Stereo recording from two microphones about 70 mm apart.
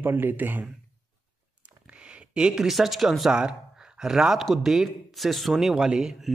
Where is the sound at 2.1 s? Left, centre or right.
Centre.